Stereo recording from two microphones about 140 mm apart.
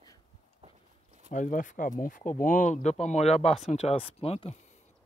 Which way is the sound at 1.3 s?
70° left (ahead or behind).